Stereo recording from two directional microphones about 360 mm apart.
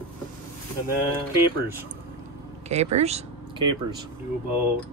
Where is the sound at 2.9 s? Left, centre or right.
Centre.